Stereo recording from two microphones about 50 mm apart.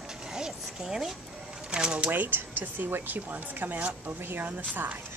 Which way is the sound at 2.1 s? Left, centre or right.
Right.